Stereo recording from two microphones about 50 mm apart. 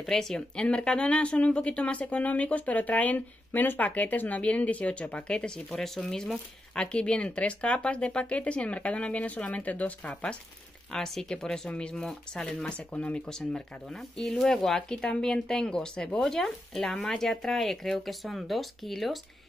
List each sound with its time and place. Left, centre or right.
0.0 s speech: centre; by 10.1 s left
10.9 s speech: centre
12.7 s speech: left
13.3 s speech: centre